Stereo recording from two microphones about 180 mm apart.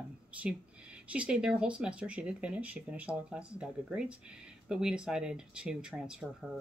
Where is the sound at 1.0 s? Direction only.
5° right (ahead or behind).